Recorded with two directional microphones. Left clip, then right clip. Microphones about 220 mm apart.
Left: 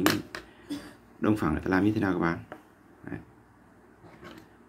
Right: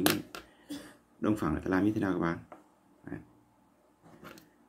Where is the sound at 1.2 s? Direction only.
Centre (ahead or behind).